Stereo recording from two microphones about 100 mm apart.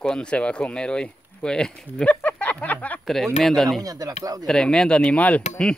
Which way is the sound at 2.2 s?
15° left (ahead or behind).